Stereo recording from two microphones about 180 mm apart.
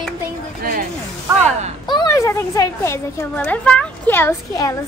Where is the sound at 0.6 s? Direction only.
55° right (ahead or behind).